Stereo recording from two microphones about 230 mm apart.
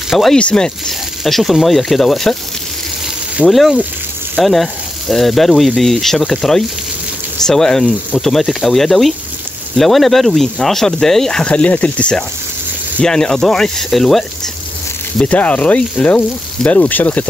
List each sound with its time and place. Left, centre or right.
0.1 s speech: centre
3.3 s speech: centre